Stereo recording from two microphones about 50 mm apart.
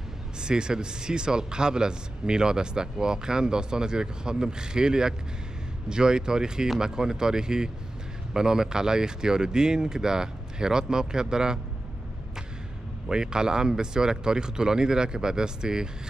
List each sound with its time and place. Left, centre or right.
0.4 s speech: centre
13.1 s speech: centre